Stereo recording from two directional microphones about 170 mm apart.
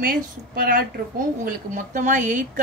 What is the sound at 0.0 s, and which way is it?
Speech, 60° right (ahead or behind).